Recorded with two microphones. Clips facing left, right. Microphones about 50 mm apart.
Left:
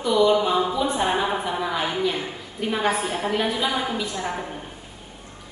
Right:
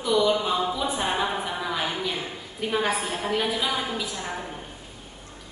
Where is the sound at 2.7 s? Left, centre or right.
Centre.